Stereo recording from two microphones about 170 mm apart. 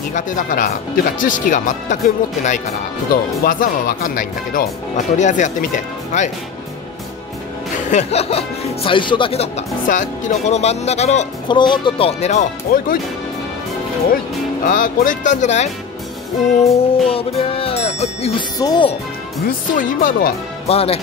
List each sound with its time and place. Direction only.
0.1 s speech: 50° left (ahead or behind)
7.9 s speech: 40° left (ahead or behind)
11.4 s speech: 25° left (ahead or behind); by 13.0 s 55° left (ahead or behind)
14.7 s speech: 50° left (ahead or behind)
18.6 s speech: 25° left (ahead or behind)
19.4 s speech: 50° left (ahead or behind)
20.6 s speech: 35° left (ahead or behind)